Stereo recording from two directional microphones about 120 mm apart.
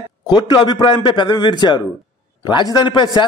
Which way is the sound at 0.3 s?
35° left (ahead or behind).